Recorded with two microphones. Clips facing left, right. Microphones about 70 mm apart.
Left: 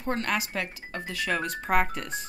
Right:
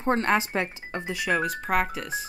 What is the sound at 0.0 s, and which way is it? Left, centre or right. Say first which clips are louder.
Speech: right 6 dB; right.